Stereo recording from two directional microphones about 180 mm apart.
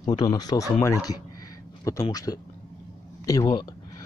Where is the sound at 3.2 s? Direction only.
20° left (ahead or behind).